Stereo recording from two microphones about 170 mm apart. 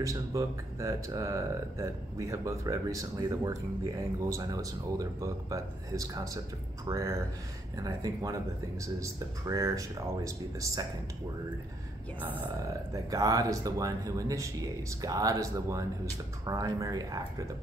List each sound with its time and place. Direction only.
0.0 s speech: 20° right (ahead or behind)
13.1 s speech: 20° right (ahead or behind)